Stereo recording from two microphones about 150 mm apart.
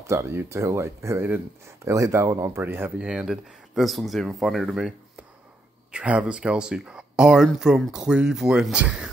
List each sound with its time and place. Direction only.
0.0 s speech: 20° right (ahead or behind)